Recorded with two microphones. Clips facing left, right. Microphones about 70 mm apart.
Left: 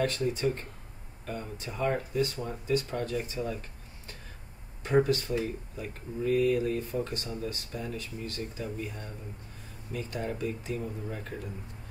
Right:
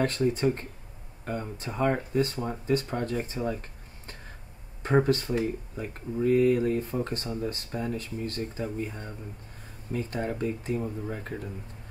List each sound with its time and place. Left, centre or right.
0.0 s speech: right
4.8 s speech: right